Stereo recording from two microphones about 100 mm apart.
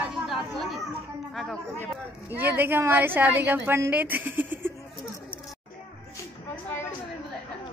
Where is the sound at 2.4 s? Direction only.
20° right (ahead or behind).